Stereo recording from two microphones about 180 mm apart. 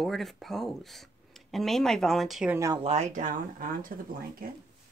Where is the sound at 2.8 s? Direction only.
40° right (ahead or behind).